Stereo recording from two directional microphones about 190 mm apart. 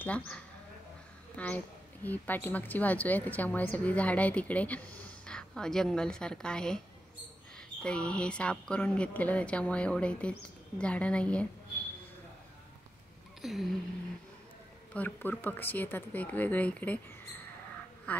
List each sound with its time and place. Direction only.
0.0 s a woman's voice: 5° left (ahead or behind)
7.8 s a woman's voice: 5° left (ahead or behind)
13.4 s speech: centre (ahead or behind)
15.0 s a woman's voice: 10° left (ahead or behind)